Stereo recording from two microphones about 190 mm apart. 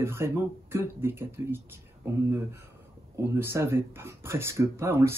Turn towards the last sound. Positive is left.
turn(degrees=-15)  # may be behind; listen again after turning